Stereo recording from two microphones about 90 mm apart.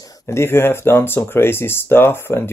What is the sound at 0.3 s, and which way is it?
Speech, 25° left (ahead or behind).